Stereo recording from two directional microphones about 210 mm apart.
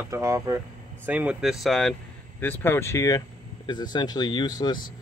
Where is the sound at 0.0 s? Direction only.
15° right (ahead or behind).